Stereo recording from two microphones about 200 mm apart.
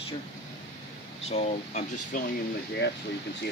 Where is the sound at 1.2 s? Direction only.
30° left (ahead or behind).